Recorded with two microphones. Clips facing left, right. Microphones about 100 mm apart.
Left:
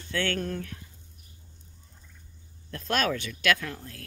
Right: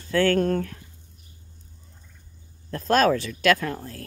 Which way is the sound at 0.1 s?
40° right (ahead or behind).